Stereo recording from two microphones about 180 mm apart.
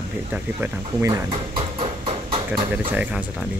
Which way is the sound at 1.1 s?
25° right (ahead or behind).